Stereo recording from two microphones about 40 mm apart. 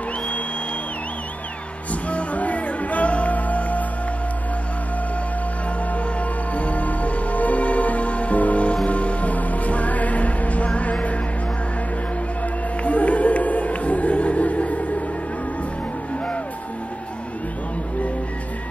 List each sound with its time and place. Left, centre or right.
1.9 s music: left
6.5 s music: left
12.8 s music: left